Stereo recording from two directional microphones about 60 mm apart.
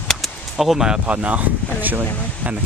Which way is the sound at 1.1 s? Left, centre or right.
Right.